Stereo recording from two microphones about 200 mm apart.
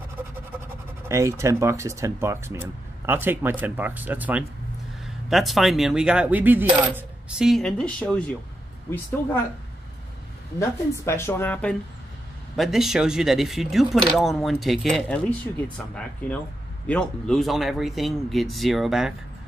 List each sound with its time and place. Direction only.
1.0 s speech: 15° right (ahead or behind)
5.0 s coin: centre (ahead or behind)
8.9 s speech: 10° left (ahead or behind)
10.6 s speech: 15° left (ahead or behind)
12.5 s coin: centre (ahead or behind)